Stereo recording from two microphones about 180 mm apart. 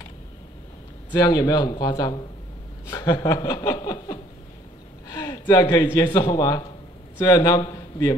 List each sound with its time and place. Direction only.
1.1 s a man's voice: 20° left (ahead or behind)